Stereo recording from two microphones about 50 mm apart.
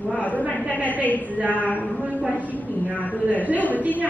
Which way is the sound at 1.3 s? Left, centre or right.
Right.